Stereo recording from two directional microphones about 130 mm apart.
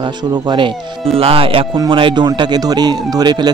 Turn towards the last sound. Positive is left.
turn(degrees=-35)  # may be behind; listen again after turning